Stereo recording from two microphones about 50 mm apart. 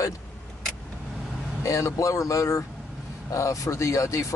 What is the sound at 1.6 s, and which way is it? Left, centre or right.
Speech, left.